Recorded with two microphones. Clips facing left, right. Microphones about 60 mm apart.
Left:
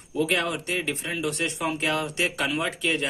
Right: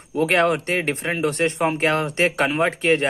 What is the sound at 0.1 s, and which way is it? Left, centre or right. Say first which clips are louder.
Speech: right 7 dB; right.